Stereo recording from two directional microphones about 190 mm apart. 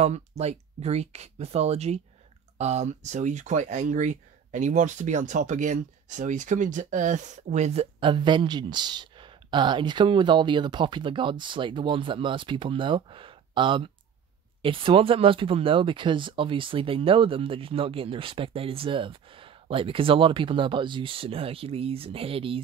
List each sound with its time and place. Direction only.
0.0 s speech: 35° right (ahead or behind)